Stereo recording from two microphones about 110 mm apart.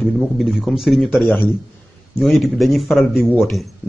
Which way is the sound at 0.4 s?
Centre (ahead or behind).